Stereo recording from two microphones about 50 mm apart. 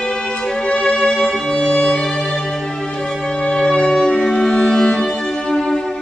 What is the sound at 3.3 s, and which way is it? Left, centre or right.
Music, centre.